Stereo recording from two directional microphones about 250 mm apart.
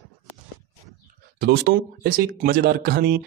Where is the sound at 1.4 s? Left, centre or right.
Right.